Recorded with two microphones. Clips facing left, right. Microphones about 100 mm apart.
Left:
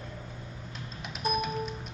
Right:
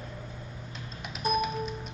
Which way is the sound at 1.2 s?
Centre (ahead or behind).